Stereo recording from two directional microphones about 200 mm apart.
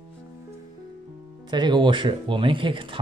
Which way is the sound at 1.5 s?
20° right (ahead or behind).